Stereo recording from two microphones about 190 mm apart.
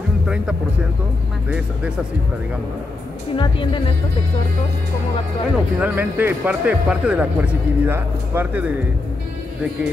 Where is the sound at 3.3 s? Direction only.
25° left (ahead or behind).